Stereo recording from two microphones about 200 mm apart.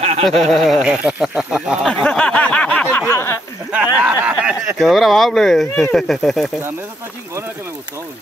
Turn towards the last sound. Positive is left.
turn(degrees=-10)  # may be behind; listen again after turning